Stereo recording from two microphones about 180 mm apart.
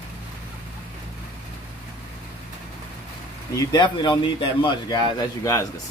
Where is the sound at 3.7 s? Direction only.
25° left (ahead or behind).